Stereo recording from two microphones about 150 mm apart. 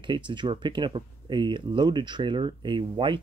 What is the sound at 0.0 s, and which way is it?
Speech, 30° right (ahead or behind).